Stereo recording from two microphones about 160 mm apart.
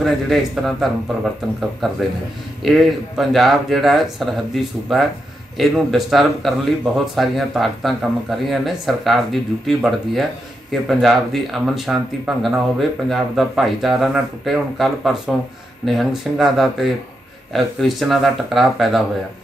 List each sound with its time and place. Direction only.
0.0 s speech: centre (ahead or behind)